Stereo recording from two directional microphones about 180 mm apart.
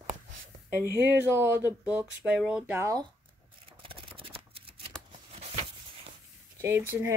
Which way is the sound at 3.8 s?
30° right (ahead or behind).